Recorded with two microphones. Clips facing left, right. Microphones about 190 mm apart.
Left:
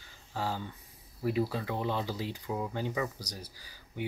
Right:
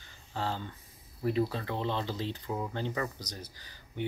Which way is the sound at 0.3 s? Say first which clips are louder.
Even; 10° left (ahead or behind).